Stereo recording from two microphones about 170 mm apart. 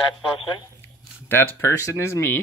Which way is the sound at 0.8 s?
15° left (ahead or behind).